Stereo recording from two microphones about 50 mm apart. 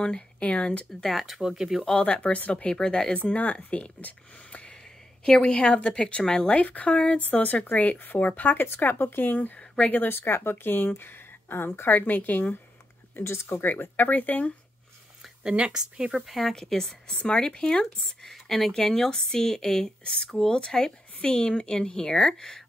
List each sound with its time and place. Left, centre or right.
0.0 s speech: left
1.0 s speech: centre
1.8 s speech: centre
3.3 s speech: left
8.6 s speech: left
9.6 s speech: left
10.0 s speech: left
12.0 s speech: left
13.1 s speech: left
13.6 s speech: left
15.4 s speech: centre
16.3 s speech: centre
17.2 s speech: left